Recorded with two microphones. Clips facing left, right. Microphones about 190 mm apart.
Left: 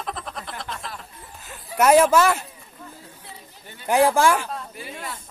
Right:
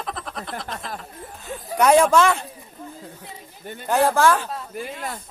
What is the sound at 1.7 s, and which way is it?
Speech, 5° left (ahead or behind).